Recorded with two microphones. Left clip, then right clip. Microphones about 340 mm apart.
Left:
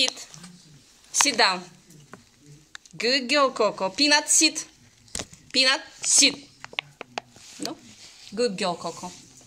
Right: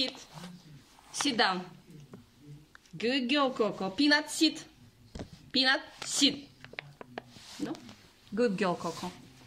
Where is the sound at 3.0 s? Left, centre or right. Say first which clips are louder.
Left 7 dB; centre.